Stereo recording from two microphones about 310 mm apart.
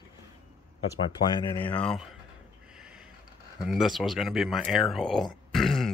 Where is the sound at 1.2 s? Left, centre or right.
Centre.